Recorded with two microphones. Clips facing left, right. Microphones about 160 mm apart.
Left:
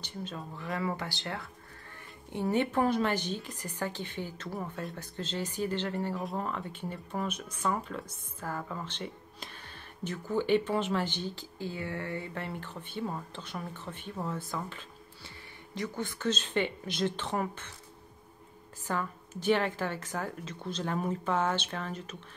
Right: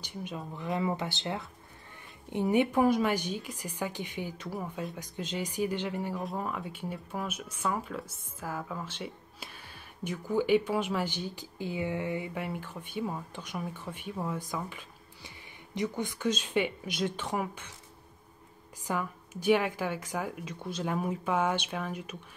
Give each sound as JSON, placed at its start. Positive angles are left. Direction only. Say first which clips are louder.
{"t": 0.0, "sound": "speech", "louder": "right 1 dB", "side_deg": -15}
{"t": 4.6, "sound": "speech", "louder": "right 1 dB", "side_deg": 0}
{"t": 4.9, "sound": "speech", "louder": "right 1 dB", "side_deg": -15}
{"t": 18.9, "sound": "speech", "louder": "right 1 dB", "side_deg": -10}